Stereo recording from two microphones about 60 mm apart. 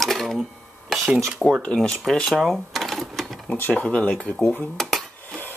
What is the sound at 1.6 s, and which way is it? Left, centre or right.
Speech, centre.